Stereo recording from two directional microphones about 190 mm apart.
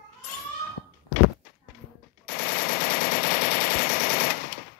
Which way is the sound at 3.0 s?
50° left (ahead or behind).